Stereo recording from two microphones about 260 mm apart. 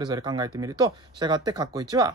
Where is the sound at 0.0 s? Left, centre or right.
Centre.